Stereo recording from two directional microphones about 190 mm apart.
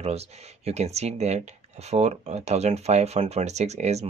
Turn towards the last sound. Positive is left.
turn(degrees=-35)  # may be behind; listen again after turning